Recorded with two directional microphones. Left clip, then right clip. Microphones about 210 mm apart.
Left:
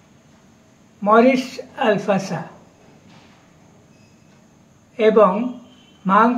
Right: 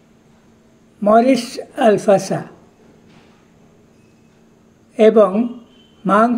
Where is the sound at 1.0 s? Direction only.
55° right (ahead or behind).